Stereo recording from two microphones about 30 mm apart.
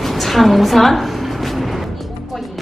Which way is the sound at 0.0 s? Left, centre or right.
Centre.